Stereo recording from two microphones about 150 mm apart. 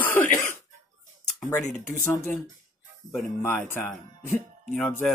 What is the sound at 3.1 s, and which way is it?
Speech, 10° left (ahead or behind).